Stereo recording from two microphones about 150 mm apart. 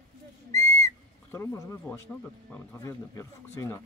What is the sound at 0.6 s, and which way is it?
Whistle, 20° left (ahead or behind).